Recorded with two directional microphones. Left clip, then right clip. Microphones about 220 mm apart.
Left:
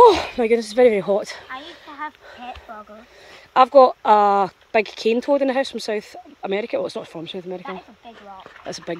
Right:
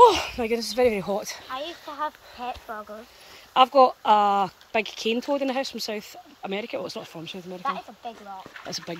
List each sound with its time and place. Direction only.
0.1 s speech: 30° left (ahead or behind)
1.9 s a sound: 35° right (ahead or behind)
2.4 s speech: 20° right (ahead or behind)
3.5 s speech: 25° left (ahead or behind)